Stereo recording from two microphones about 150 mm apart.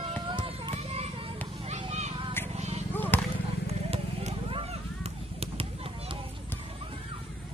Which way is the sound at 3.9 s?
45° right (ahead or behind).